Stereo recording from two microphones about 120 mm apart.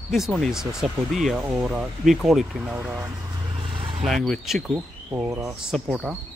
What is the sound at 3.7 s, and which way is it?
Vehicle, 45° right (ahead or behind).